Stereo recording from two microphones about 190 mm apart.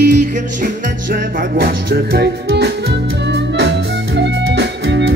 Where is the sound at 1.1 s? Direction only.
55° right (ahead or behind).